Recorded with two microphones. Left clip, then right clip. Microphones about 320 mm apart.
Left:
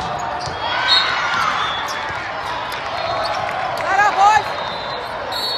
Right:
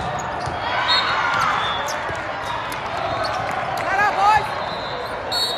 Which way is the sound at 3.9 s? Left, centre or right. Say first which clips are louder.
Left 4 dB; left.